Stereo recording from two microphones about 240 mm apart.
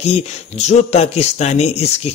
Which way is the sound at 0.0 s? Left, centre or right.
Left.